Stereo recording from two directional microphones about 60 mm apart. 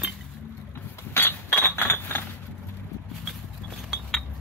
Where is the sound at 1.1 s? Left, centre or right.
Left.